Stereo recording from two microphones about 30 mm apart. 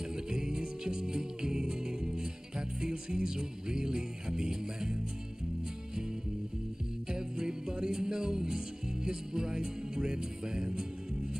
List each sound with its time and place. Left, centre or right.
0.1 s music: right
7.1 s music: right